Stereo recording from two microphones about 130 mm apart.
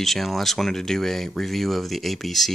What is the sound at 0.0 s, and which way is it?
Speech, centre (ahead or behind).